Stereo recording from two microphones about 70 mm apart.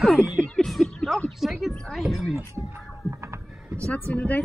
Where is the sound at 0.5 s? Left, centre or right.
Centre.